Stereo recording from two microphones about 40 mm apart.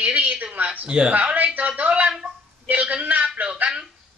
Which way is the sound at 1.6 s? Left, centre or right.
Right.